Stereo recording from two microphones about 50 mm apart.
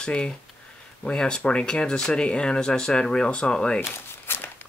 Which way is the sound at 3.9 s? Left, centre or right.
Left.